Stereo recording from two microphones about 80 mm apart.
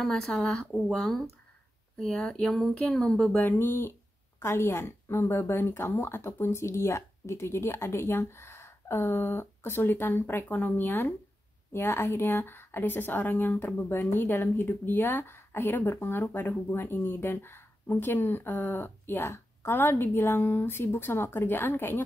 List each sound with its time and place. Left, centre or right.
0.0 s speech: centre
3.3 s a woman's voice: left